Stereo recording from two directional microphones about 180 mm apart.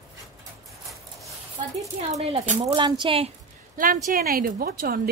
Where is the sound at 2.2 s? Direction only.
35° right (ahead or behind).